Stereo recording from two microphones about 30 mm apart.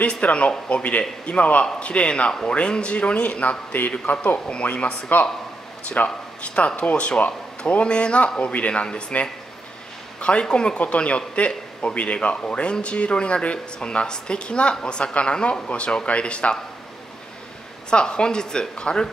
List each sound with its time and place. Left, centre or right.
0.0 s speech: left
4.0 s speech: left
4.6 s speech: left
5.1 s a man's voice: left
6.0 s speech: left
7.8 s speech: left
8.4 s speech: left
10.4 s speech: left
10.8 s speech: left
13.9 s speech: left
17.8 s speech: left